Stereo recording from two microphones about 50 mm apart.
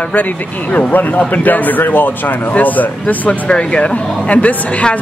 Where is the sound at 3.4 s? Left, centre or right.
Left.